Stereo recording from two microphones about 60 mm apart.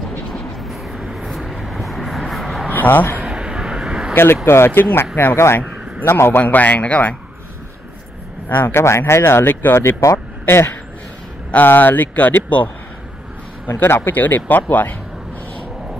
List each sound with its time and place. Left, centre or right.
0.9 s vehicle: centre
2.7 s a sound: left
3.3 s vehicle: centre
4.1 s a man's voice: left
6.4 s speech: left
8.5 s a man's voice: left
8.7 s speech: left
10.1 s a sound: left
11.5 s speech: left
13.7 s speech: left
14.1 s speech: left